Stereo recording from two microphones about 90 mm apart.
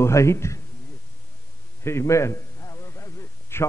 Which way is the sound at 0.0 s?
30° left (ahead or behind).